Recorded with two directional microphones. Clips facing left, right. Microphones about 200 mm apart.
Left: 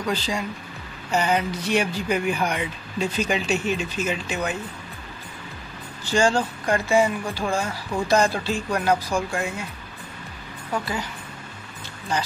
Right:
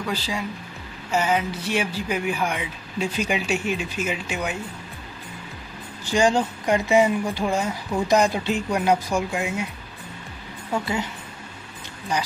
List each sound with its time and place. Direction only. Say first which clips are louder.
0.0 s speech: left 2 dB; 5° right (ahead or behind)
6.0 s speech: right 1 dB; 15° right (ahead or behind)
10.7 s speech: right 1 dB; 25° right (ahead or behind)